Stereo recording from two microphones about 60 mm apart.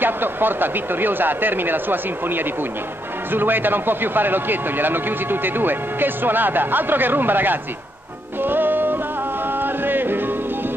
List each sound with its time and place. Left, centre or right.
0.0 s a man's voice: right
8.4 s music: right